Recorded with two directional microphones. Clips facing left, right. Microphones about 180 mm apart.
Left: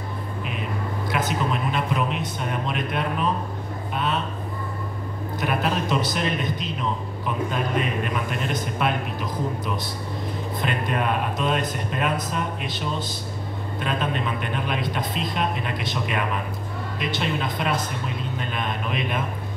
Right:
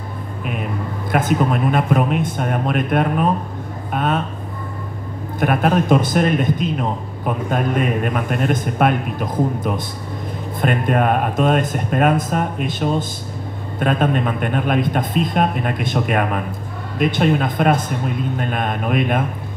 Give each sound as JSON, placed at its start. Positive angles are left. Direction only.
{"t": 1.1, "sound": "a man's voice", "side_deg": -50}
{"t": 5.4, "sound": "a man's voice", "side_deg": -50}